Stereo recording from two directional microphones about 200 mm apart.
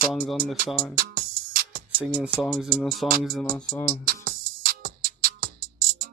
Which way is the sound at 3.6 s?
15° left (ahead or behind).